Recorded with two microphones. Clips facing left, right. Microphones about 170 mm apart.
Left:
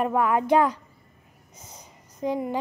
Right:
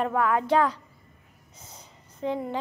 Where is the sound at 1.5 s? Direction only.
15° left (ahead or behind).